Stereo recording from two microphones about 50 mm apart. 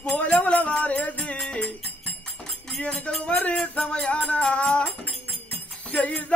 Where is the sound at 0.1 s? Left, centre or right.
Left.